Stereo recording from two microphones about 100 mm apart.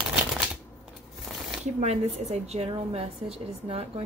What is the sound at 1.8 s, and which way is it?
A woman's voice, 90° right.